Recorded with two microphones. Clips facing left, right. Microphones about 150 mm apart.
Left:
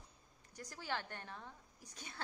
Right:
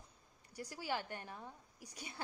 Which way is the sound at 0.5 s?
10° right (ahead or behind).